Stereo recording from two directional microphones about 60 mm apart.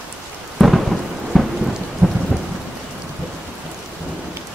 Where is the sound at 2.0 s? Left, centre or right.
Centre.